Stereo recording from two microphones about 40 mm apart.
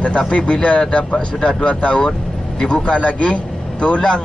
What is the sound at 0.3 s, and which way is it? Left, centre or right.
Speech, left.